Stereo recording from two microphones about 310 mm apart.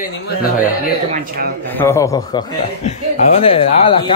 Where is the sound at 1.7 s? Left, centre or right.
Centre.